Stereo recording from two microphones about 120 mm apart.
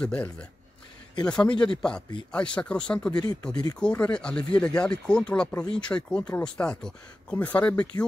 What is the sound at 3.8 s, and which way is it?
Speech, 10° left (ahead or behind).